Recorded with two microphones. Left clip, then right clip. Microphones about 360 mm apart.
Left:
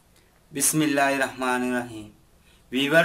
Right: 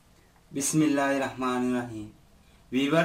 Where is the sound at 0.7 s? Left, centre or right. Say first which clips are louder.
Left 3 dB; left.